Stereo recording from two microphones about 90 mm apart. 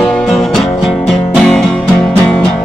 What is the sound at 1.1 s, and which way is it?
Music, 5° left (ahead or behind).